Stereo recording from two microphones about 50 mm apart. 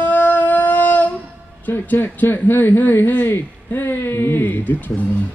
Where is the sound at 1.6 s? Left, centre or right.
Left.